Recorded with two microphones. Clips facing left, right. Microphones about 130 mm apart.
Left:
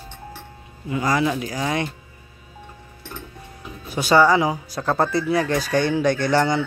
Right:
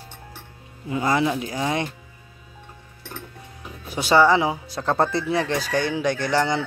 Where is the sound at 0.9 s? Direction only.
25° right (ahead or behind).